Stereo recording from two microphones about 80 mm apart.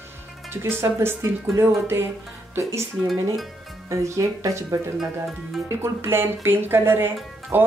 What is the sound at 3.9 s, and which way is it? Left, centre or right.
Speech, right.